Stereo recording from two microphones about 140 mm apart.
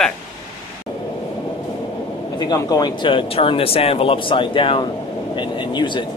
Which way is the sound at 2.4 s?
30° left (ahead or behind).